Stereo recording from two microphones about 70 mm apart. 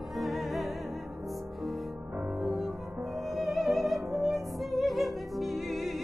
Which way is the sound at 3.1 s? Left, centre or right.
Centre.